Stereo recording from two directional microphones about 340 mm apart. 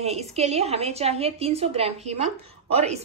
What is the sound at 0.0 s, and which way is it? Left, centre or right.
A woman's voice, centre.